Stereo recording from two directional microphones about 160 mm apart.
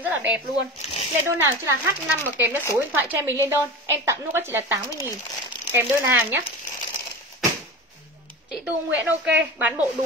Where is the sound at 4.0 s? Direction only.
15° right (ahead or behind).